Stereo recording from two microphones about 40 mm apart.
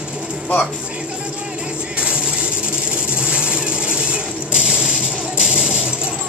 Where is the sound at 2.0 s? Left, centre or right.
Right.